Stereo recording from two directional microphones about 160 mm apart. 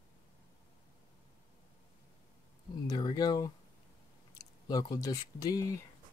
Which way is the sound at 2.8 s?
25° left (ahead or behind).